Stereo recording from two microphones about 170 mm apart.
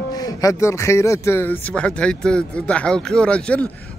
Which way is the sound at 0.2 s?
20° left (ahead or behind).